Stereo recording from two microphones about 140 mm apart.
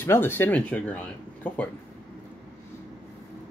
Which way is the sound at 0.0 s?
15° left (ahead or behind).